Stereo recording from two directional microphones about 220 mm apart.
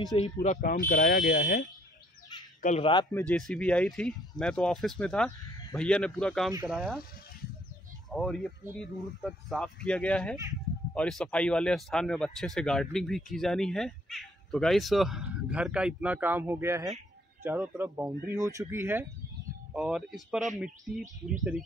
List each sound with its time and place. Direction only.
0.2 s speech: 35° left (ahead or behind)
2.6 s speech: 30° left (ahead or behind)
3.1 s speech: 10° left (ahead or behind)
8.1 s speech: centre (ahead or behind)